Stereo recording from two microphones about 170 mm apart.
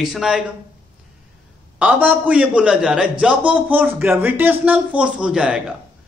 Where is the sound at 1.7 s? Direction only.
10° right (ahead or behind).